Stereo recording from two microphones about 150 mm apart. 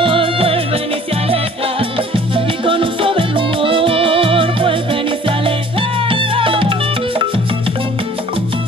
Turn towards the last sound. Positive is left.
turn(degrees=-35)  # may be behind; listen again after turning